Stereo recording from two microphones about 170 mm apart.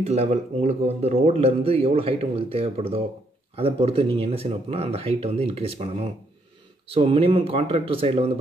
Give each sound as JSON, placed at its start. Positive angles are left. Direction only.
{"t": 0.0, "sound": "speech", "side_deg": -40}